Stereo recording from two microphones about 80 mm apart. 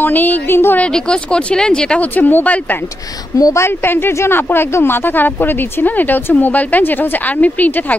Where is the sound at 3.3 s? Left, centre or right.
Left.